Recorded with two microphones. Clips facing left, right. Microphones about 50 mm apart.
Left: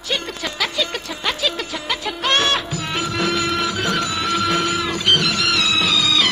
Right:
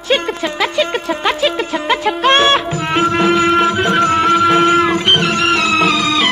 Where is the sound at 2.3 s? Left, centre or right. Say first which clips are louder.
Right 4 dB; right.